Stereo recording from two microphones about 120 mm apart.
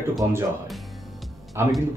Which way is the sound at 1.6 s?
20° right (ahead or behind).